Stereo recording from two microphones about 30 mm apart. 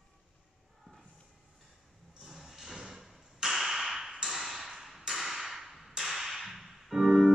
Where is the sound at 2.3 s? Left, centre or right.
Centre.